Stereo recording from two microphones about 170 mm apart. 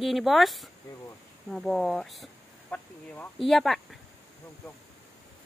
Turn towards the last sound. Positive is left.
turn(degrees=0)  # may be behind; listen again after turning